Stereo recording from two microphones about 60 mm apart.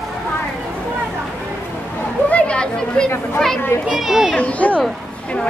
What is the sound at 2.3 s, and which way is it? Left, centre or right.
Chatter, centre.